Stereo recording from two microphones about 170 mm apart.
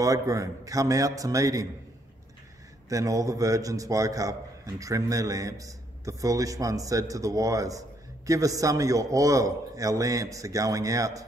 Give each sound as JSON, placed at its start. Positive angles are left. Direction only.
{"t": 0.0, "sound": "a man's voice", "side_deg": -20}
{"t": 2.9, "sound": "a man's voice", "side_deg": -20}